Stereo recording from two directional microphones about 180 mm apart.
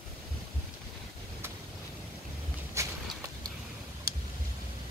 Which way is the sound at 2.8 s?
15° right (ahead or behind).